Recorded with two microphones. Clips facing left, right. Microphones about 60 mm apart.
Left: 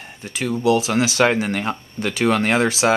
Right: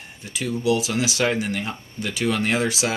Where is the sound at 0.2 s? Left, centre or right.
Left.